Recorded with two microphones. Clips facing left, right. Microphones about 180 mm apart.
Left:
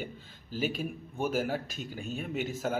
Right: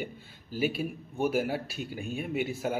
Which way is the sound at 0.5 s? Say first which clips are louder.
Right 3 dB; 10° right (ahead or behind).